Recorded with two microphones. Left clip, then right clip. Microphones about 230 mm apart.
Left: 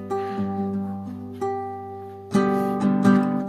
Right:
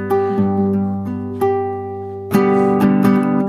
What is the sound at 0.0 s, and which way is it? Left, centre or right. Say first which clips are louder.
Music: right 10 dB; right.